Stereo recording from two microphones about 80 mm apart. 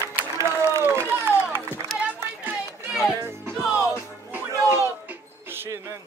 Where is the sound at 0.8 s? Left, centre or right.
Right.